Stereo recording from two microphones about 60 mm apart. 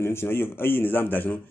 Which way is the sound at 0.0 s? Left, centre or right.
Left.